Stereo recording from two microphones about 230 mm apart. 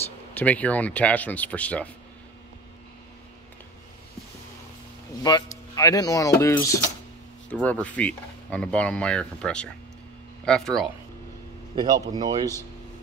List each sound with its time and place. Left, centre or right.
0.3 s speech: centre
5.2 s speech: centre
11.7 s speech: centre